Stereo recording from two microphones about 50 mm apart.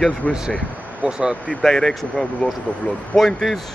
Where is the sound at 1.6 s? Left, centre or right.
Centre.